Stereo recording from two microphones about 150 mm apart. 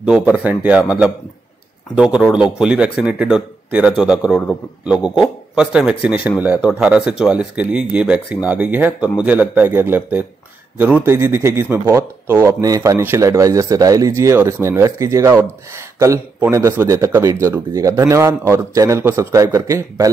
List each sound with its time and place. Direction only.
0.3 s a man's voice: 10° right (ahead or behind)
2.0 s a man's voice: 5° right (ahead or behind)